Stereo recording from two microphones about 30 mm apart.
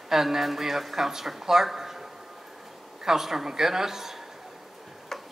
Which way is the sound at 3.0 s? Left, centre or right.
Centre.